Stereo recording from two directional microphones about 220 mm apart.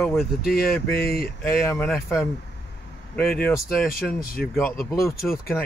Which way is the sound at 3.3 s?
5° left (ahead or behind).